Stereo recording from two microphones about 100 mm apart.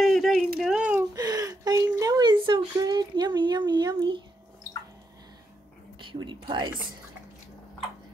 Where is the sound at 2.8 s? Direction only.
45° right (ahead or behind).